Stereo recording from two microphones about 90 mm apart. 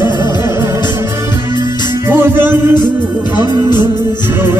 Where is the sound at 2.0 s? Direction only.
25° right (ahead or behind).